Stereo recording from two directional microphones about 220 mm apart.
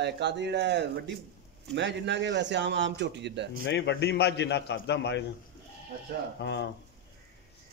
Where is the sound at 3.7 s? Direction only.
50° left (ahead or behind).